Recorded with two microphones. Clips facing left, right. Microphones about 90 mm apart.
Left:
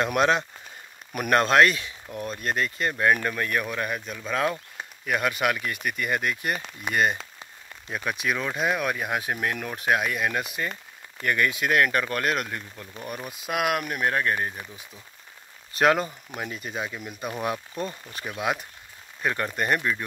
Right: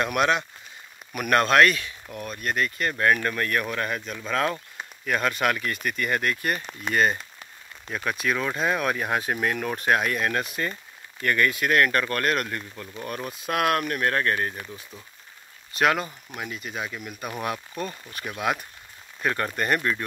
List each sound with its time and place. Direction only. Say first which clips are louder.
0.0 s speech: left 1 dB; 25° left (ahead or behind); by 10.7 s 5° left (ahead or behind)
11.2 s speech: right 1 dB; 15° left (ahead or behind)
15.8 s speech: left 2 dB; 35° left (ahead or behind); by 19.9 s 15° left (ahead or behind)